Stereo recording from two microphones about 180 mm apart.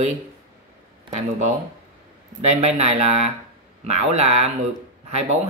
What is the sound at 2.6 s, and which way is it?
Speech, 40° right (ahead or behind).